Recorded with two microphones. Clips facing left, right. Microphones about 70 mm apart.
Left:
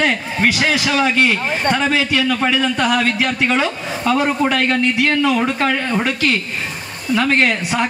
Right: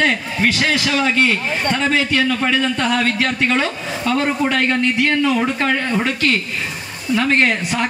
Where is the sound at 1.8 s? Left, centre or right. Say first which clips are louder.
Even; centre.